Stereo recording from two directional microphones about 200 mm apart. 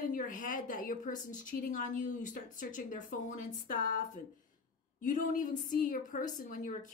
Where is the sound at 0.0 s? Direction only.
40° left (ahead or behind).